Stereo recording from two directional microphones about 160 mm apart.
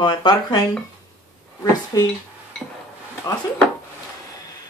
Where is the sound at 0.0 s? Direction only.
30° left (ahead or behind).